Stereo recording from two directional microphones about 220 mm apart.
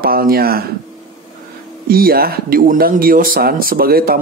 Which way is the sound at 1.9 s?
45° right (ahead or behind).